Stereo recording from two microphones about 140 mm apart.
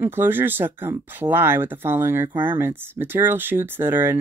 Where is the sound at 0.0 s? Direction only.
15° right (ahead or behind).